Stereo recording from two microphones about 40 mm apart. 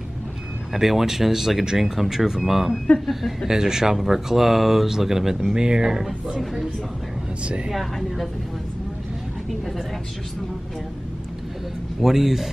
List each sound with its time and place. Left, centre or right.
0.7 s a woman's voice: centre
3.4 s speech: centre
7.4 s speech: right
7.7 s a woman's voice: centre
12.0 s speech: centre